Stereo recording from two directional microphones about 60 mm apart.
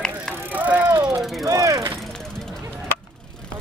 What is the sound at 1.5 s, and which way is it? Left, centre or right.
Mechanisms, right.